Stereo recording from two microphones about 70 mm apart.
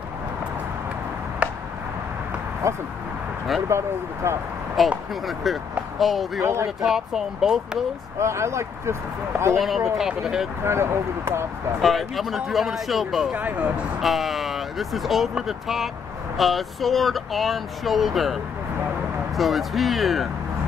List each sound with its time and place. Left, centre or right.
1.4 s a sound: centre
2.6 s speech: right
4.8 s speech: centre
6.4 s speech: right
6.8 s speech: centre
8.2 s speech: right
9.9 s speech: centre
10.6 s speech: right
11.8 s speech: centre
13.3 s speech: right
14.0 s speech: centre